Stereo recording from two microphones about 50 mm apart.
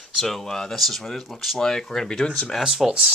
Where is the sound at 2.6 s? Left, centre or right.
Centre.